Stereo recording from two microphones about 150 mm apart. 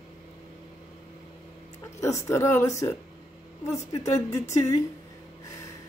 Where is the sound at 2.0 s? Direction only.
20° left (ahead or behind).